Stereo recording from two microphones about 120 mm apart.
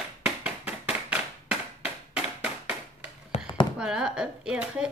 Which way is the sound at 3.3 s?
65° left (ahead or behind).